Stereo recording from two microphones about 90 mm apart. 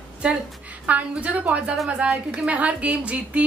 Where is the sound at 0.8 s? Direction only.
15° right (ahead or behind).